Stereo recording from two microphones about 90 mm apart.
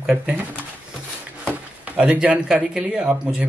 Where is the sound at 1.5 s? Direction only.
15° right (ahead or behind).